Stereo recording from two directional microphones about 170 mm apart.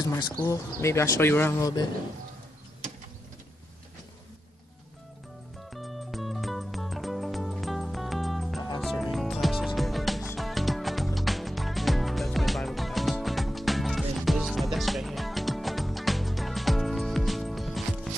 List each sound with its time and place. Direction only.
0.0 s speech: 25° left (ahead or behind)
5.7 s music: centre (ahead or behind)